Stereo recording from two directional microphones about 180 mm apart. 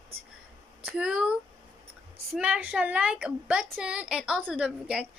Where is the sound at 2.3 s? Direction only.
5° right (ahead or behind).